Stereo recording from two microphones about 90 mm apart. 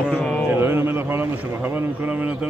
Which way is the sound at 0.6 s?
25° right (ahead or behind).